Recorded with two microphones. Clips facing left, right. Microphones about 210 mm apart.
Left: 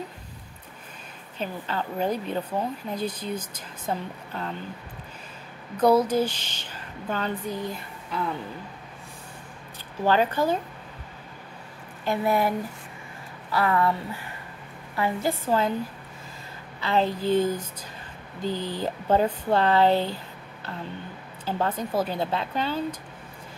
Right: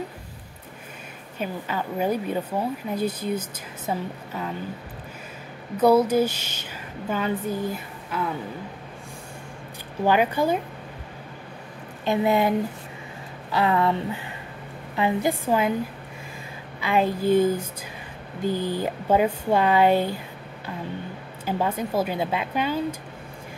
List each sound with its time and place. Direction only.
1.4 s speech: 10° right (ahead or behind)
5.8 s speech: 10° right (ahead or behind)
10.0 s speech: 15° right (ahead or behind)
12.0 s speech: 20° right (ahead or behind)
16.8 s speech: 10° right (ahead or behind)
21.5 s speech: 10° right (ahead or behind)